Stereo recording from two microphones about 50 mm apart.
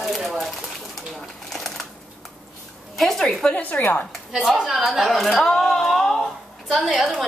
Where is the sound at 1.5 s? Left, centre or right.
Centre.